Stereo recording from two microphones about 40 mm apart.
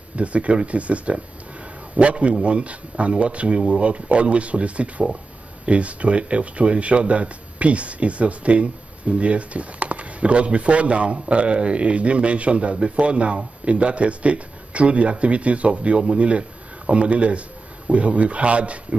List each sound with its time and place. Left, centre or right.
0.1 s speech: right